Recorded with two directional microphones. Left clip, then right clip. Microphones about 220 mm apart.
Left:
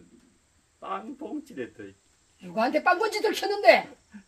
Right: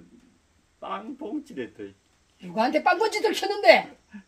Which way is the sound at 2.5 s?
Centre (ahead or behind).